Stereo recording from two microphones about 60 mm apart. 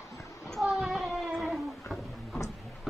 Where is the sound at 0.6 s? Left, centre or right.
Centre.